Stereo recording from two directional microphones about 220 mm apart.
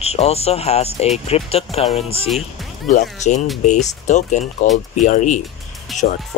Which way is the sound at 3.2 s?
30° left (ahead or behind).